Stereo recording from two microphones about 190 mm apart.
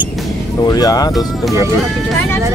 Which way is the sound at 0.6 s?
20° left (ahead or behind).